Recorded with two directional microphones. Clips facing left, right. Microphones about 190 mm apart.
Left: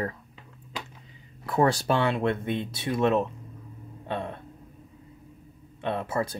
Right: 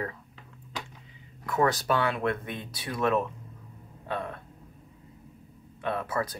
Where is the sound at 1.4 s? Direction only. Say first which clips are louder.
Left 2 dB; 30° left (ahead or behind).